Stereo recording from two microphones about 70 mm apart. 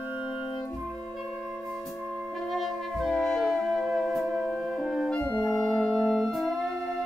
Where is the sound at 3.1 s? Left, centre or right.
Centre.